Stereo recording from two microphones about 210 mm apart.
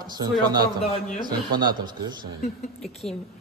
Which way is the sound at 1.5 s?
20° right (ahead or behind).